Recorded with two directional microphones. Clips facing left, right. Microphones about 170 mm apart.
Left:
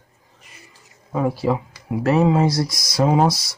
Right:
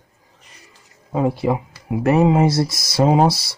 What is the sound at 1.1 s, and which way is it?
Speech, 20° right (ahead or behind).